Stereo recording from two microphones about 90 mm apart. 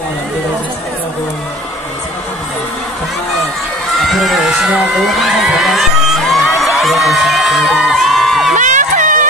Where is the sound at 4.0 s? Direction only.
Centre (ahead or behind).